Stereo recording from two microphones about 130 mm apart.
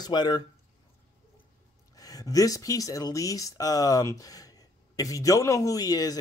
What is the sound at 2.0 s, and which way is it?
Speech, 30° left (ahead or behind).